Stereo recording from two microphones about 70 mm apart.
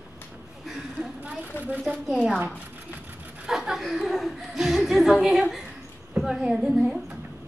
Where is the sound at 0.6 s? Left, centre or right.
Centre.